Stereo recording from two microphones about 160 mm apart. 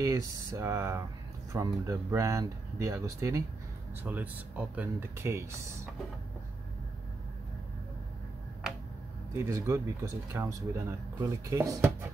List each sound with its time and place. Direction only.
0.0 s speech: 20° right (ahead or behind)
9.3 s speech: 15° right (ahead or behind)